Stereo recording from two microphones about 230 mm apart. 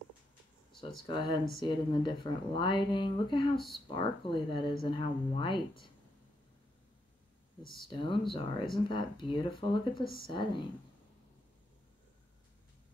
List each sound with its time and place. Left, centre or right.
1.0 s speech: left
7.9 s speech: left